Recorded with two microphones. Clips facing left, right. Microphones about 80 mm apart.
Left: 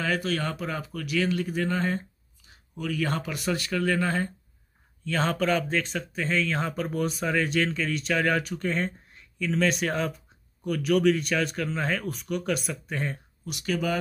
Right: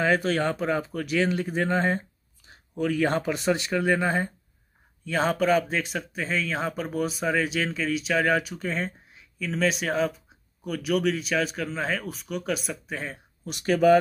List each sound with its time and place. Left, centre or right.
0.0 s speech: right; by 13.2 s centre
13.5 s speech: right